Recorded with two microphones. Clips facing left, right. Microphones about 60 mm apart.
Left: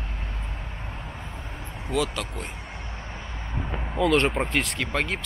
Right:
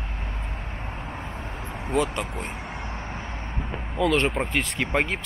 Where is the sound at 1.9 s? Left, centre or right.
Right.